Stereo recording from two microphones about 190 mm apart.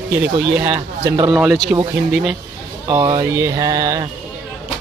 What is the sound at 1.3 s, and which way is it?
Speech, centre (ahead or behind).